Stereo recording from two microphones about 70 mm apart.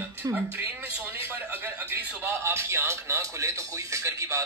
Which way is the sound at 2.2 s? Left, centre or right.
Right.